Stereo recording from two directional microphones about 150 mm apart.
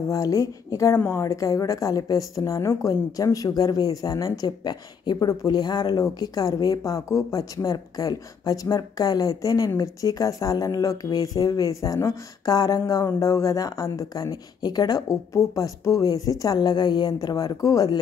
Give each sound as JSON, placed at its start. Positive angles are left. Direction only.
{"t": 0.1, "sound": "speech", "side_deg": 20}